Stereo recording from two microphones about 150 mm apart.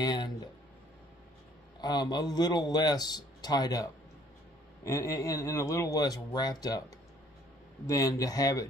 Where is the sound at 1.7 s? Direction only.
25° left (ahead or behind).